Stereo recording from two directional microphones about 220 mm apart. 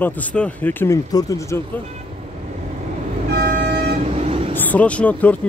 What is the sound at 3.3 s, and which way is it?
Vehicle, 45° right (ahead or behind).